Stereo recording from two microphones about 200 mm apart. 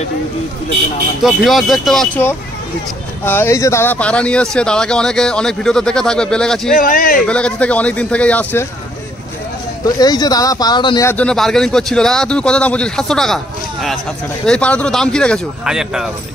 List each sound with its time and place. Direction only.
1.2 s speech: centre (ahead or behind)
3.3 s speech: 10° left (ahead or behind)
6.7 s speech: 45° left (ahead or behind)
7.2 s speech: 5° left (ahead or behind)
9.8 s speech: 20° left (ahead or behind)
11.1 s speech: 5° left (ahead or behind)